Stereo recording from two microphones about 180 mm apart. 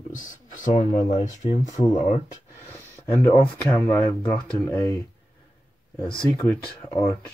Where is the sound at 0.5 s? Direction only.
45° left (ahead or behind).